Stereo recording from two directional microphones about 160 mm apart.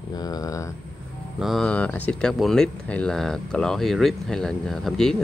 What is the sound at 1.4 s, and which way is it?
Speech, 5° left (ahead or behind).